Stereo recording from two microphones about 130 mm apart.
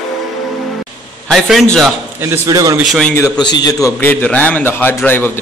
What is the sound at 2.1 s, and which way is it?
Speech, 20° right (ahead or behind).